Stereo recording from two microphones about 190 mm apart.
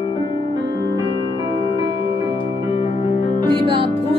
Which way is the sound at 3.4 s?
30° right (ahead or behind).